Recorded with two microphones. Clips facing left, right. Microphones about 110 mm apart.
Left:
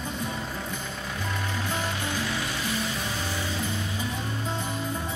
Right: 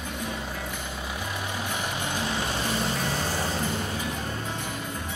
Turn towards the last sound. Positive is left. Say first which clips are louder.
# right 3 dB
turn(degrees=-45)  # may be behind; listen again after turning